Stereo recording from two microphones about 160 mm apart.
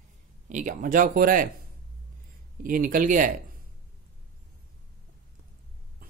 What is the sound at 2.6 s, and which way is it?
Speech, 60° right (ahead or behind).